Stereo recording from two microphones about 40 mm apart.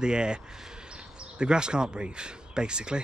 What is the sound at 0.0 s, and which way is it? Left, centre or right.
Speech, right.